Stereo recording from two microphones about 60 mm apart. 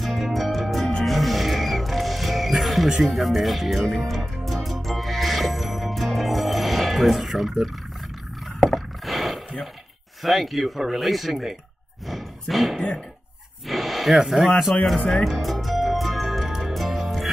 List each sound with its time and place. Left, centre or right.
0.0 s music: centre
3.1 s speech: centre
4.6 s music: centre
8.5 s a sound: centre
10.2 s speech: centre
15.2 s music: centre